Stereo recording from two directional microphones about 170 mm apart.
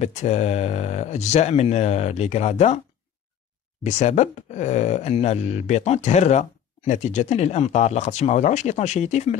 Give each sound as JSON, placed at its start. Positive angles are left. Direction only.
{"t": 0.0, "sound": "speech", "side_deg": 40}
{"t": 3.8, "sound": "speech", "side_deg": 40}